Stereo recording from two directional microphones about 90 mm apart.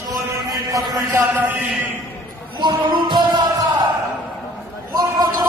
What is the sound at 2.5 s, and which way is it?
Speech, 55° right (ahead or behind).